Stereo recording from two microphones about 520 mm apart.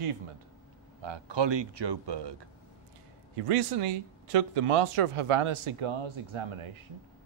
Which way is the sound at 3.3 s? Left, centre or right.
Right.